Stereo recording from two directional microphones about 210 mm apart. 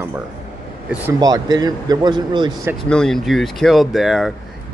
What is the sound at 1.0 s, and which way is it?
A man's voice, 15° right (ahead or behind).